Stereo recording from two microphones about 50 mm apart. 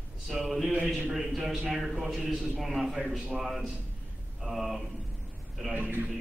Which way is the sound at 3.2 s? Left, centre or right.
Centre.